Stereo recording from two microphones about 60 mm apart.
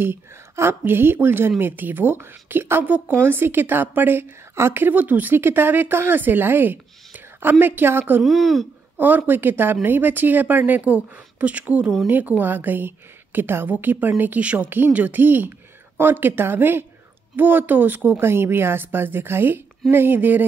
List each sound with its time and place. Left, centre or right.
0.0 s a woman's voice: right
8.2 s speech: centre
8.9 s a woman's voice: right
14.4 s a woman's voice: right